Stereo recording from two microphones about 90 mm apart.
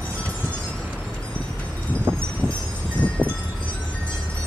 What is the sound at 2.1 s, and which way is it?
Wind chime, 25° right (ahead or behind).